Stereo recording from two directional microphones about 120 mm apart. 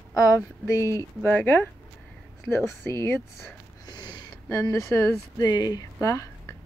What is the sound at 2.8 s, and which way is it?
Speech, 20° left (ahead or behind).